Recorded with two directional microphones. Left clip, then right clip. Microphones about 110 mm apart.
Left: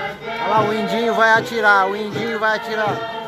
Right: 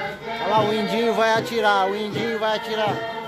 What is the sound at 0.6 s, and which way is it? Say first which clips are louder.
Music: left 2 dB; 55° left (ahead or behind).